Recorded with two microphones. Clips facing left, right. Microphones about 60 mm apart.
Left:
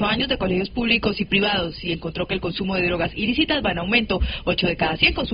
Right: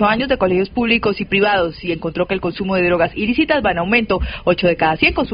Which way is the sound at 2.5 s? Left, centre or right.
Right.